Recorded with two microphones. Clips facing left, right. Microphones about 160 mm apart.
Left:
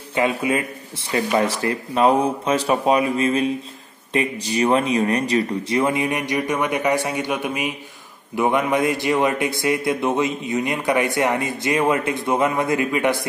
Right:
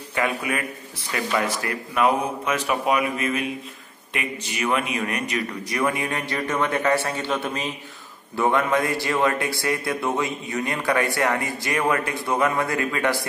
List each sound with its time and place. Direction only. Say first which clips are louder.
0.1 s a man's voice: left 5 dB; 20° left (ahead or behind)